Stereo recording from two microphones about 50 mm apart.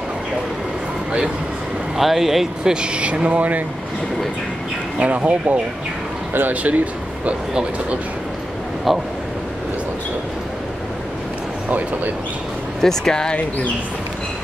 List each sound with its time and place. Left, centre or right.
2.0 s speech: centre; by 3.6 s right
4.9 s speech: right
8.9 s speech: centre
12.8 s speech: centre